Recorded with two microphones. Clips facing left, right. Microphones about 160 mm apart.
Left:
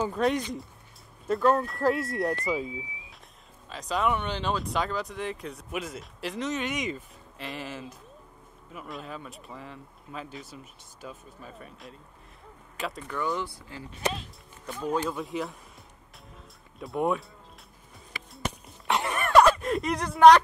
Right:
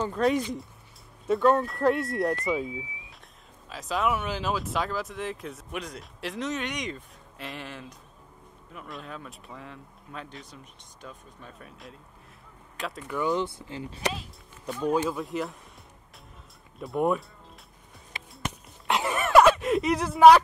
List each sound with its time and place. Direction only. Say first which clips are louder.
0.0 s speech: right 1 dB; centre (ahead or behind)
13.1 s speech: right 5 dB; 20° right (ahead or behind)
14.7 s speech: right 3 dB; 5° right (ahead or behind)
16.8 s speech: right 2 dB; centre (ahead or behind)
18.9 s a sound: right 1 dB; centre (ahead or behind)